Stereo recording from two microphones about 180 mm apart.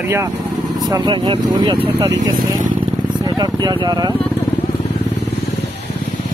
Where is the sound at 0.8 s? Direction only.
20° right (ahead or behind).